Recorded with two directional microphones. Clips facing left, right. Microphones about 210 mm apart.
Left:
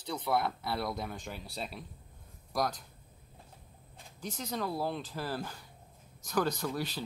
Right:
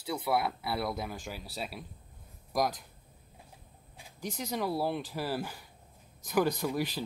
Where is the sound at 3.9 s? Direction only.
10° right (ahead or behind).